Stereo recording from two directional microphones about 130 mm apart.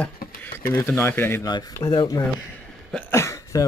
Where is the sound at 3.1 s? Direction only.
20° left (ahead or behind).